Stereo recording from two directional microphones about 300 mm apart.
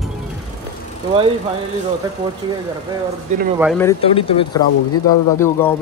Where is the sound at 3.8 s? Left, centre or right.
Centre.